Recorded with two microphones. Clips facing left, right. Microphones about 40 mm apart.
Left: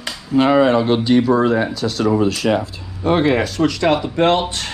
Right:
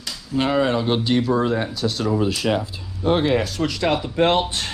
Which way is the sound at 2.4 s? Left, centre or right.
Left.